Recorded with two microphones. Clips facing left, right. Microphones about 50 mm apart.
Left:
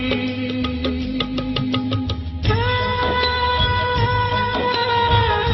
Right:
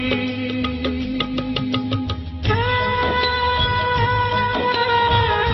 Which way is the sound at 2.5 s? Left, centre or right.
Centre.